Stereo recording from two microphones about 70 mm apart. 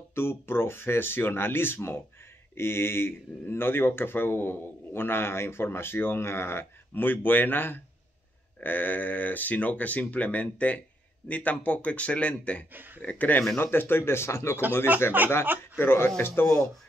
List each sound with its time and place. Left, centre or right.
0.1 s speech: left; by 12.6 s centre
12.7 s speech: right
13.0 s speech: left
14.9 s speech: right
15.8 s speech: left